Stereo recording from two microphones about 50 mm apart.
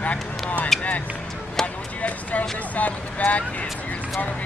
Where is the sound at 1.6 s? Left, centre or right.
Left.